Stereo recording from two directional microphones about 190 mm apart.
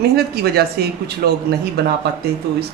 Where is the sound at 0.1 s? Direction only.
55° right (ahead or behind).